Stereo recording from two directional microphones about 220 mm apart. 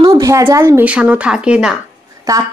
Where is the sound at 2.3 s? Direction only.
15° right (ahead or behind).